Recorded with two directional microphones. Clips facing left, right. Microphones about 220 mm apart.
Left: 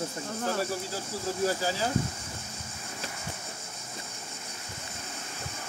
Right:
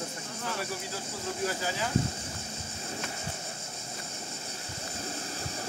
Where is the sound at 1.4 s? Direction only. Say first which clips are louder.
Left 4 dB; 35° left (ahead or behind).